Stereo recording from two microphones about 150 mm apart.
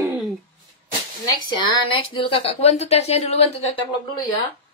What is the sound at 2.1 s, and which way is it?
Speech, 40° left (ahead or behind).